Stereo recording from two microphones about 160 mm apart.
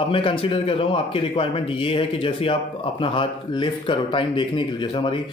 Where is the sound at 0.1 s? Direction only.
35° left (ahead or behind).